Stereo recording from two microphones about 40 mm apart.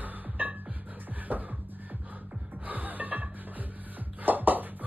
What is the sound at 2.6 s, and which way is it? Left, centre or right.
Music, right.